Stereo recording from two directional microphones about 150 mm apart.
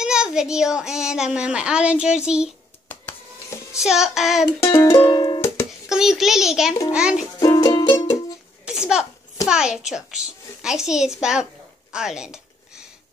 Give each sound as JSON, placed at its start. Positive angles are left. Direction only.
{"t": 0.0, "sound": "a woman's voice", "side_deg": -5}
{"t": 2.9, "sound": "printer", "side_deg": 15}
{"t": 3.7, "sound": "a woman's voice", "side_deg": -5}
{"t": 4.6, "sound": "music", "side_deg": 20}
{"t": 5.9, "sound": "a woman's voice", "side_deg": -5}
{"t": 6.9, "sound": "music", "side_deg": -5}
{"t": 7.3, "sound": "music", "side_deg": 25}
{"t": 8.6, "sound": "a sound", "side_deg": -5}
{"t": 9.5, "sound": "a woman's voice", "side_deg": -5}
{"t": 11.9, "sound": "a sound", "side_deg": -5}